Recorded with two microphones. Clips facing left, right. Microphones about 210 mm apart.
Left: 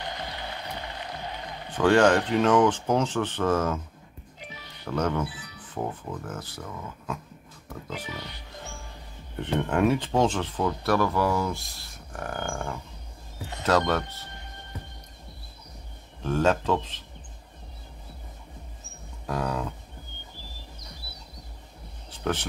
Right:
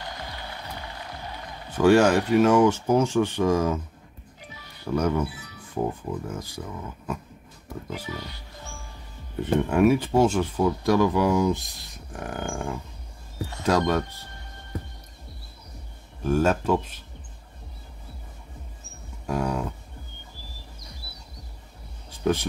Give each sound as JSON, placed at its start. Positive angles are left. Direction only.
{"t": 1.7, "sound": "speech", "side_deg": -10}
{"t": 4.8, "sound": "speech", "side_deg": -10}
{"t": 9.4, "sound": "speech", "side_deg": -10}
{"t": 16.3, "sound": "speech", "side_deg": -10}
{"t": 19.2, "sound": "cattle", "side_deg": -10}
{"t": 22.1, "sound": "speech", "side_deg": -10}